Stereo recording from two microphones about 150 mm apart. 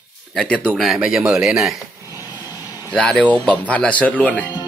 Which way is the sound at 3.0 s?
10° left (ahead or behind).